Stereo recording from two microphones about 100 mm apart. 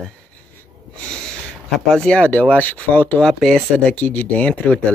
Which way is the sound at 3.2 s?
5° left (ahead or behind).